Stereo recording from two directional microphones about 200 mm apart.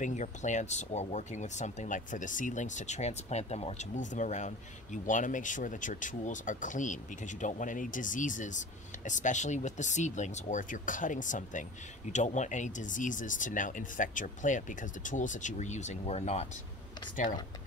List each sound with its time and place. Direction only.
0.0 s speech: 35° left (ahead or behind)